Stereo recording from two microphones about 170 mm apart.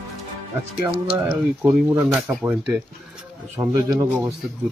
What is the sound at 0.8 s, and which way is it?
Speech, 10° right (ahead or behind).